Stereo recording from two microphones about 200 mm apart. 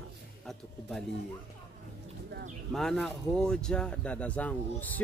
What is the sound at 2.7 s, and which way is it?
Speech, centre (ahead or behind).